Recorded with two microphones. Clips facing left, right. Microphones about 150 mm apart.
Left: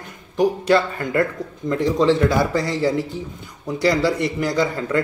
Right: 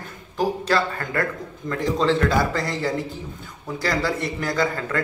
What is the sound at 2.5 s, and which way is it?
Speech, 20° left (ahead or behind).